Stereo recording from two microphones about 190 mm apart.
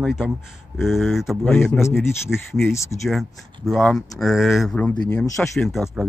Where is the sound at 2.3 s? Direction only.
15° left (ahead or behind).